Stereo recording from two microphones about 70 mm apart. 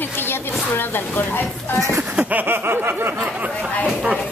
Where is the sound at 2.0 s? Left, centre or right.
Right.